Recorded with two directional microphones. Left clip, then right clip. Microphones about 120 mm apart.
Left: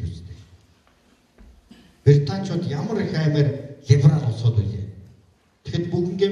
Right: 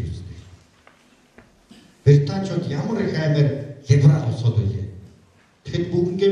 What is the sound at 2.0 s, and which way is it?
A man's voice, 5° left (ahead or behind).